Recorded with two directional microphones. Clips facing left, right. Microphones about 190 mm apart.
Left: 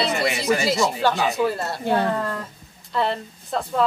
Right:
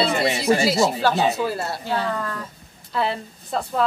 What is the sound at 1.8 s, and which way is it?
Speech, 55° left (ahead or behind).